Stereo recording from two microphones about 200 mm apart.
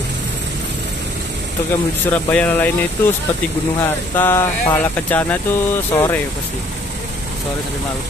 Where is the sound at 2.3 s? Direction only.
10° left (ahead or behind).